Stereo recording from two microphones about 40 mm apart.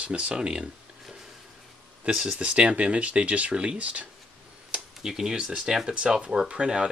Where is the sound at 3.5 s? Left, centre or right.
Right.